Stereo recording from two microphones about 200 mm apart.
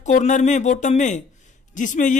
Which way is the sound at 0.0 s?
35° left (ahead or behind).